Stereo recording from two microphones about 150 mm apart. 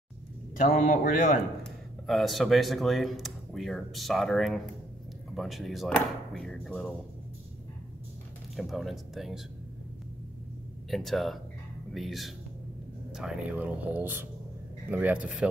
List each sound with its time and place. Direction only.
0.6 s speech: 60° left (ahead or behind)
1.6 s speech: centre (ahead or behind)
8.5 s speech: centre (ahead or behind)
10.9 s speech: centre (ahead or behind)